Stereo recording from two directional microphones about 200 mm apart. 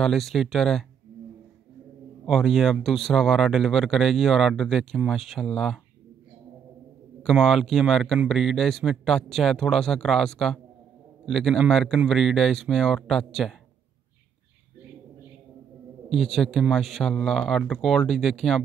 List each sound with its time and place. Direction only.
0.0 s speech: centre (ahead or behind)
2.2 s speech: centre (ahead or behind)
7.2 s speech: centre (ahead or behind)
16.1 s speech: centre (ahead or behind)